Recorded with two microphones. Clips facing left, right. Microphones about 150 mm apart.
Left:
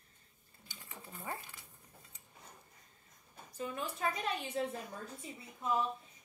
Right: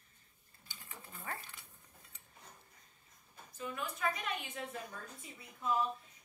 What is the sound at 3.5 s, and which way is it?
A woman's voice, 35° left (ahead or behind).